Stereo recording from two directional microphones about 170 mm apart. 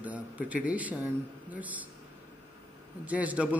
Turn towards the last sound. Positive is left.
turn(degrees=-10)  # may be behind; listen again after turning